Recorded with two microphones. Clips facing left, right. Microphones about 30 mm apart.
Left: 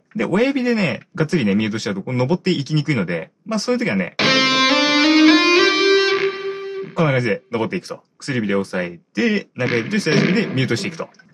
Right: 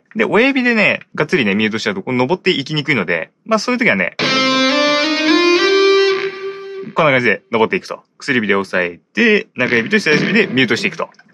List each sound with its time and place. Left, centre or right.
0.2 s speech: right
3.4 s speech: right
4.2 s music: centre
7.0 s speech: right